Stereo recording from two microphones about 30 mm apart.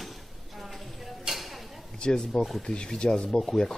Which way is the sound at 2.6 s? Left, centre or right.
Left.